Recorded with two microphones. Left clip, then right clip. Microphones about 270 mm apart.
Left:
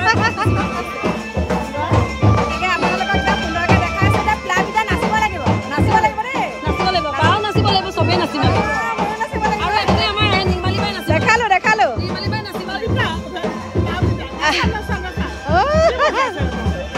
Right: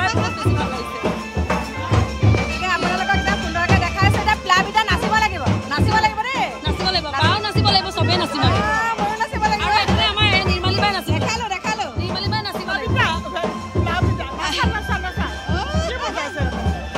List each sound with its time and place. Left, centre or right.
0.0 s music: centre
2.6 s music: centre
10.4 s music: centre
10.8 s music: centre
12.9 s music: centre